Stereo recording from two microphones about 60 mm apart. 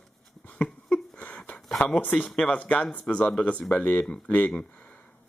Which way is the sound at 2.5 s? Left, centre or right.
Left.